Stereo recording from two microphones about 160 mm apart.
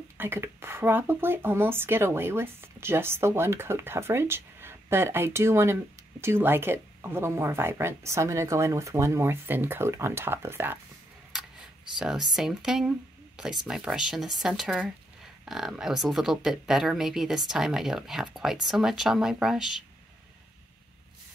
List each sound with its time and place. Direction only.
0.2 s speech: 15° right (ahead or behind)
11.3 s a sound: 5° right (ahead or behind)
12.4 s speech: 5° right (ahead or behind)